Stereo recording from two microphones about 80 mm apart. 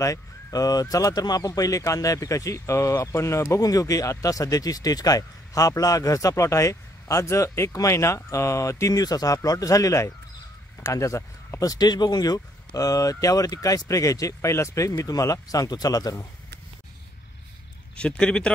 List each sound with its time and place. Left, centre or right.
0.0 s speech: left
3.6 s speech: left
11.6 s speech: left
17.9 s speech: centre